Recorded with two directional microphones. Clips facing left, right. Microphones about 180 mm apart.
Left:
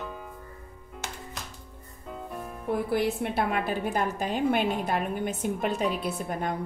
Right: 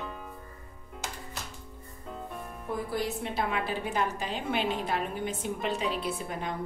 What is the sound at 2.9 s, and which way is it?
A woman's voice, 60° left (ahead or behind).